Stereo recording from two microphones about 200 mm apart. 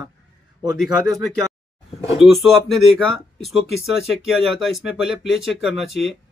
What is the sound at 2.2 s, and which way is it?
Speech, centre (ahead or behind).